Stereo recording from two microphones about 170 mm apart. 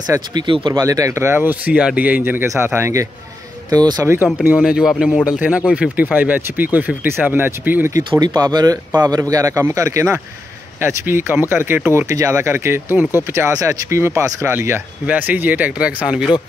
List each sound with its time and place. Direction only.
0.1 s speech: 25° right (ahead or behind)
4.6 s speech: 5° right (ahead or behind)
8.4 s speech: 20° right (ahead or behind); by 16.3 s 5° right (ahead or behind)